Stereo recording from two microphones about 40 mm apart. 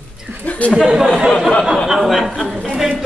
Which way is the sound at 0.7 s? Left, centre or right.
Right.